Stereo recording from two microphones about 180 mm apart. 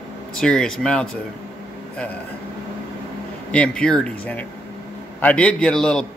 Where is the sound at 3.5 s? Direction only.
5° left (ahead or behind).